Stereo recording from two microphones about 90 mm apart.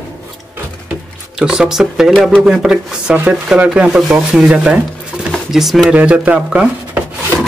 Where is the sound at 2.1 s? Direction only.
5° left (ahead or behind).